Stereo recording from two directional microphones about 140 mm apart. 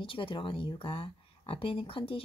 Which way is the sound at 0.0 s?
40° left (ahead or behind).